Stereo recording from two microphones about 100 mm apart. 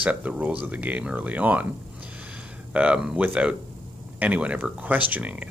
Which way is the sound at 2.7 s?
10° right (ahead or behind).